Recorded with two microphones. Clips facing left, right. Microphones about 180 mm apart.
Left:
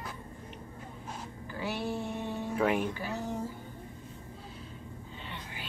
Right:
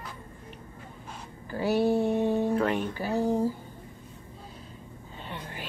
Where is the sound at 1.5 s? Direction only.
40° right (ahead or behind).